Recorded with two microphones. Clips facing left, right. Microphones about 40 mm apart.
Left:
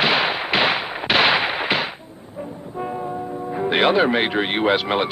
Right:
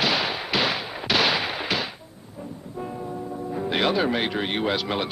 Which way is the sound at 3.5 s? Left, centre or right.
Left.